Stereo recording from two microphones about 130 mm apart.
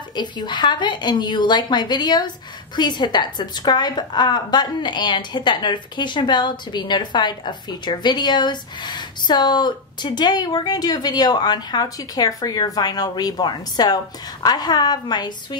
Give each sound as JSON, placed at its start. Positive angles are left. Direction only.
{"t": 0.1, "sound": "a woman's voice", "side_deg": 35}